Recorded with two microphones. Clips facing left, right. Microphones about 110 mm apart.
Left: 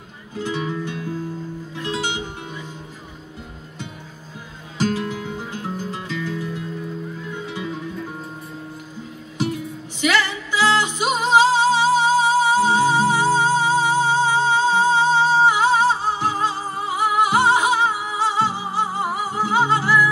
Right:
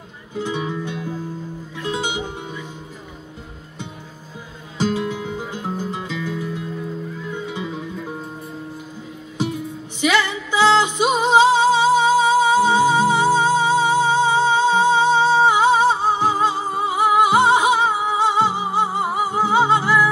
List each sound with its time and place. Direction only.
0.4 s music: 15° right (ahead or behind)
4.7 s music: 15° right (ahead or behind)
9.4 s music: 15° right (ahead or behind)